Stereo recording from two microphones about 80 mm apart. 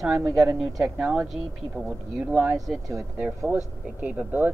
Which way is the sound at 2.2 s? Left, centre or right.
Centre.